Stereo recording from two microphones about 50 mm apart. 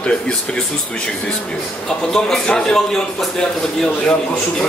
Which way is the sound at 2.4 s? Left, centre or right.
Left.